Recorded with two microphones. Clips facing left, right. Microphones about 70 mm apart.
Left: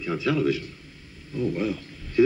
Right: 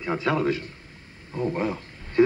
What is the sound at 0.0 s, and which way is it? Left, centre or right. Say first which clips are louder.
A man's voice: even; right.